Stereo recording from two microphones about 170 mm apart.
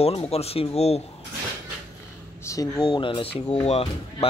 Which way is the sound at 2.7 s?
30° left (ahead or behind).